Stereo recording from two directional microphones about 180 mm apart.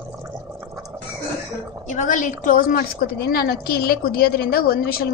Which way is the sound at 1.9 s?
45° left (ahead or behind).